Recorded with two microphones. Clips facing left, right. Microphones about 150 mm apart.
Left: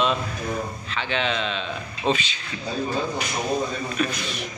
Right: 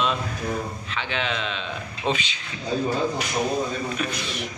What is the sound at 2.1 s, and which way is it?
Speech, 15° left (ahead or behind).